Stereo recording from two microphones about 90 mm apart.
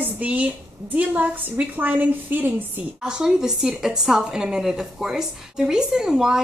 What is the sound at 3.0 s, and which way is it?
A woman's voice, 5° right (ahead or behind).